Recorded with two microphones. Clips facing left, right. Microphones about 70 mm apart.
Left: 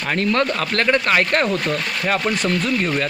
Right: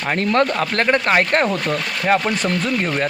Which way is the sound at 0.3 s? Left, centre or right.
Right.